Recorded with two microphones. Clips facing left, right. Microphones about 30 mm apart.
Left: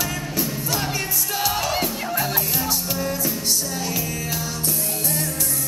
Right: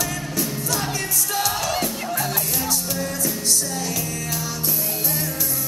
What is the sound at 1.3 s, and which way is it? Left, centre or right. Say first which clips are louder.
Music: left 1 dB; centre.